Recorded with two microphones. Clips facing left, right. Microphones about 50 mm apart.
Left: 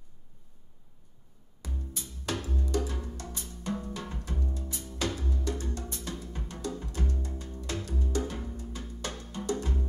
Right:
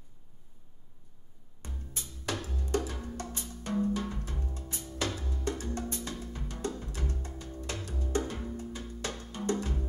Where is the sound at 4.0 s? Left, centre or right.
Left.